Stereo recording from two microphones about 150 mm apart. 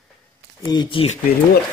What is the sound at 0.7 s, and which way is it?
Speech, 30° left (ahead or behind).